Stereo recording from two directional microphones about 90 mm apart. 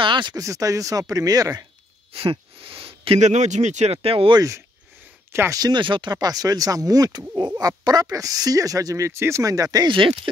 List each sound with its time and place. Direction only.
0.0 s a sound: 60° right (ahead or behind)
0.4 s speech: 40° right (ahead or behind)
2.1 s a sound: 90° right
3.9 s speech: 90° right
4.4 s speech: 35° right (ahead or behind)
5.6 s speech: 60° right (ahead or behind)
6.1 s speech: 45° right (ahead or behind)
9.8 s speech: 65° right (ahead or behind)